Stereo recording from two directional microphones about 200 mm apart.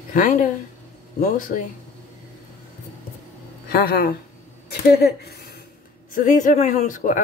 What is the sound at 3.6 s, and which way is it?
Speech, 50° left (ahead or behind).